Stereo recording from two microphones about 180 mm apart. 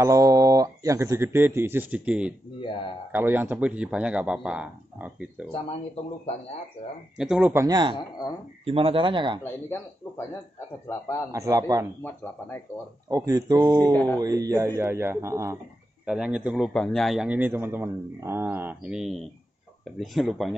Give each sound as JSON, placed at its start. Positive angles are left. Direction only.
{"t": 0.0, "sound": "speech", "side_deg": -20}
{"t": 2.6, "sound": "speech", "side_deg": 25}
{"t": 3.1, "sound": "speech", "side_deg": -10}
{"t": 7.2, "sound": "speech", "side_deg": -5}
{"t": 7.6, "sound": "speech", "side_deg": -25}
{"t": 9.4, "sound": "speech", "side_deg": 10}
{"t": 11.3, "sound": "speech", "side_deg": -15}
{"t": 12.0, "sound": "speech", "side_deg": 10}
{"t": 13.1, "sound": "speech", "side_deg": -20}
{"t": 13.9, "sound": "speech", "side_deg": 10}
{"t": 14.2, "sound": "speech", "side_deg": -20}
{"t": 16.1, "sound": "a man's voice", "side_deg": -5}